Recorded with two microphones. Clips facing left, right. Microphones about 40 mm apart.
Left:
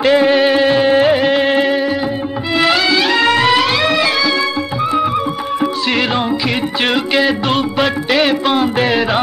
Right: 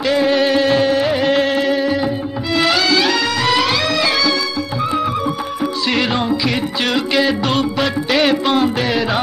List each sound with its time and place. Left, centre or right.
0.0 s music: centre
1.5 s music: left
2.5 s music: centre
5.9 s music: centre